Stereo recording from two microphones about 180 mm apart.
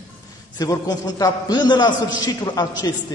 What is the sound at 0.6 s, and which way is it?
A man's voice, 20° left (ahead or behind).